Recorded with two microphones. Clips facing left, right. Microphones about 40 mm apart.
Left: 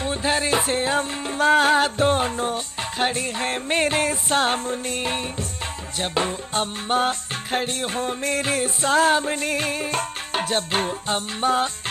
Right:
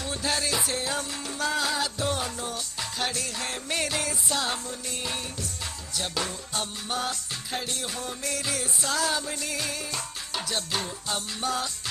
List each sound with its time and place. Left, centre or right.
0.0 s music: left